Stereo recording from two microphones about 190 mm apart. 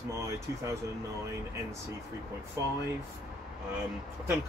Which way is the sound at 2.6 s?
15° right (ahead or behind).